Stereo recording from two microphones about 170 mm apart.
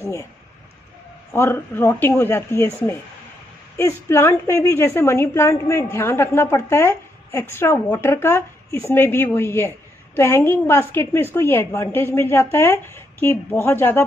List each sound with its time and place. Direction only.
0.0 s speech: 15° left (ahead or behind)
1.3 s speech: 15° left (ahead or behind)